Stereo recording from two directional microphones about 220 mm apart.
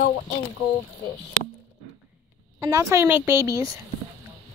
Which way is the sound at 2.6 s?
15° right (ahead or behind).